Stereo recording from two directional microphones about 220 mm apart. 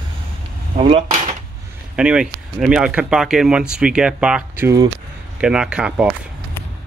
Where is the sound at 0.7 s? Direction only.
25° right (ahead or behind).